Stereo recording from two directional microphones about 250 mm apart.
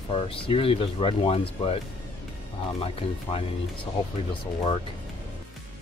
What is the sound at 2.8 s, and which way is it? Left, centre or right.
Speech, left.